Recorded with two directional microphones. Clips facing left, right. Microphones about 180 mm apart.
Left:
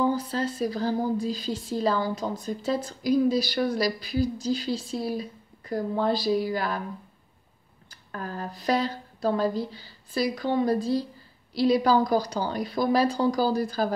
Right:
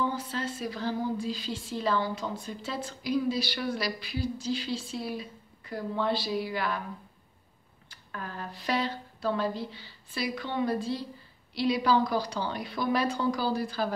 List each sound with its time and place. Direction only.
0.0 s speech: 40° left (ahead or behind)
7.9 s speech: 40° left (ahead or behind)